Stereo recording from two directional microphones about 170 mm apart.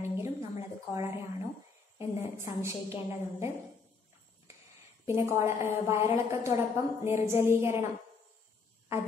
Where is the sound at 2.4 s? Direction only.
15° right (ahead or behind).